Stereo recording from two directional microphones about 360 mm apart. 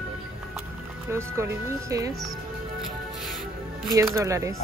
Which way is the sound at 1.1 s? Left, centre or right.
Centre.